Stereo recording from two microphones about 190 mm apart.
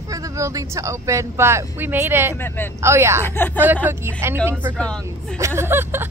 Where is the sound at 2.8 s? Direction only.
15° right (ahead or behind).